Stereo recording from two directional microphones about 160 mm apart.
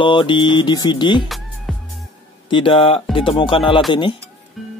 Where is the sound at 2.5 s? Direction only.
30° left (ahead or behind).